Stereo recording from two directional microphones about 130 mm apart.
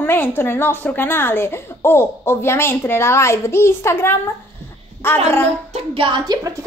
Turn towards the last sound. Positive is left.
turn(degrees=-30)  # may be behind; listen again after turning